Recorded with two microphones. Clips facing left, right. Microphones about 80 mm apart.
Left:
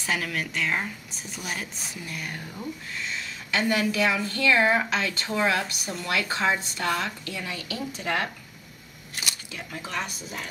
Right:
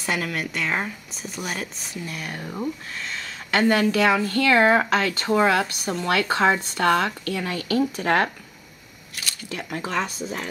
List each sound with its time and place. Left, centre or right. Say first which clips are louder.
0.0 s a woman's voice: right 2 dB; centre
2.3 s speech: right 6 dB; right
9.5 s speech: right 7 dB; right
9.9 s speech: right 5 dB; right